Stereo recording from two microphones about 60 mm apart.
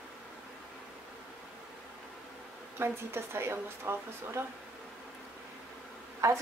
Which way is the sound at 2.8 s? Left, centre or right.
Right.